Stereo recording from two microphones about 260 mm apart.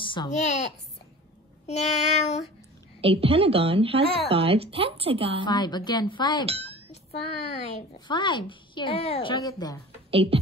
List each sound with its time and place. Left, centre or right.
0.0 s speech: centre
1.7 s child singing: left
3.0 s a woman's voice: right
5.4 s speech: centre
6.4 s a sound: right
6.9 s speech: left
10.1 s a woman's voice: right